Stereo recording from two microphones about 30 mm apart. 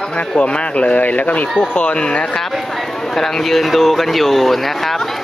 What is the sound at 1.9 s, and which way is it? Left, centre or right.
Speech, left.